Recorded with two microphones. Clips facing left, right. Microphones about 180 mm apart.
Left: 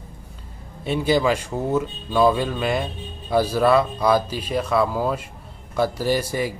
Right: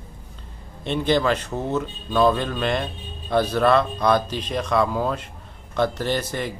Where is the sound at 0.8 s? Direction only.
10° left (ahead or behind).